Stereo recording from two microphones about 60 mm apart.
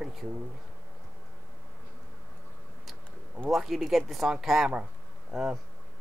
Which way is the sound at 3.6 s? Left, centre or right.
Centre.